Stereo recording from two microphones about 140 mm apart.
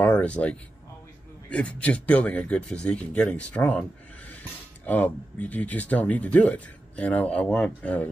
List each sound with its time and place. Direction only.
0.0 s speech: 10° left (ahead or behind)